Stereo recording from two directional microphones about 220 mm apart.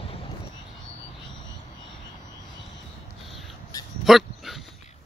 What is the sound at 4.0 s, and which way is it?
Dog, centre (ahead or behind).